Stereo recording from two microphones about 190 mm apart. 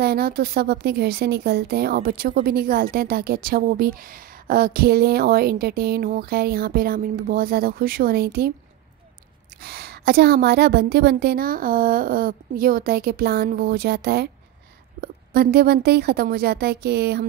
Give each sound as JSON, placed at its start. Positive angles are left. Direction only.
{"t": 0.0, "sound": "speech", "side_deg": -55}
{"t": 9.6, "sound": "a woman's voice", "side_deg": -55}